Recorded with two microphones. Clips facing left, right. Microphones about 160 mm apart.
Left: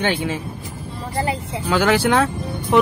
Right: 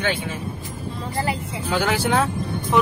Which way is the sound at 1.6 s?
90° left.